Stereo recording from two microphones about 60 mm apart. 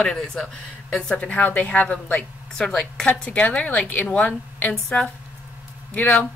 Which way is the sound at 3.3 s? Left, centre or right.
Left.